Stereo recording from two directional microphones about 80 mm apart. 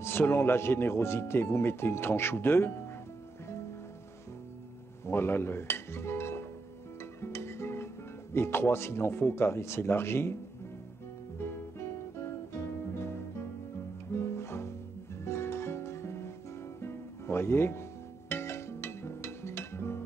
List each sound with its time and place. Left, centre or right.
0.0 s speech: left
5.0 s speech: left
14.2 s music: left